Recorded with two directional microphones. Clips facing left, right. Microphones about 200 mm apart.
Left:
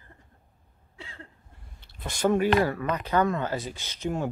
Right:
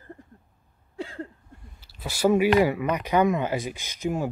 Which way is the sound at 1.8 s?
5° right (ahead or behind).